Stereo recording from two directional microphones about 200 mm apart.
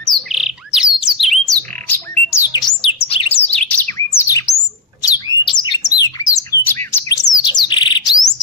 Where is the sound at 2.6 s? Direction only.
25° left (ahead or behind).